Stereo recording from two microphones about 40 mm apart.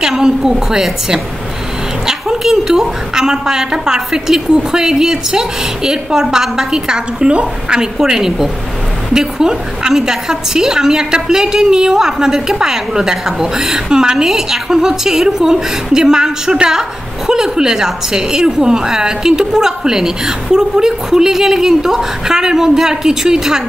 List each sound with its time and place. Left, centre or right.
0.2 s a woman's voice: centre
8.0 s a woman's voice: centre